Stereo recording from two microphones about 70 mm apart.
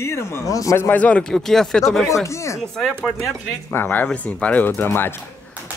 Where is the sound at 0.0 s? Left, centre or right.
Left.